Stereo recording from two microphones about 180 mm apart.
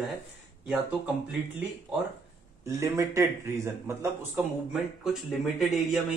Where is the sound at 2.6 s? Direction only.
15° right (ahead or behind).